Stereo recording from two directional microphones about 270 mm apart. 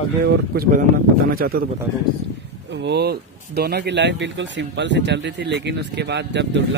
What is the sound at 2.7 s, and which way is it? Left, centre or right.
Speech, right.